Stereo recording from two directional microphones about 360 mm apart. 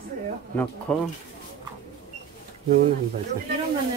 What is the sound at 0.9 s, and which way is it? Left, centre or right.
Speech, centre.